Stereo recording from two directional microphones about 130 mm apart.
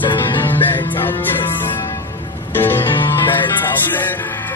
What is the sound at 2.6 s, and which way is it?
Music, 15° left (ahead or behind).